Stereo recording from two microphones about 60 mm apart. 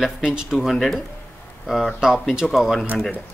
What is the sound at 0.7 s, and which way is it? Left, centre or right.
A man's voice, centre.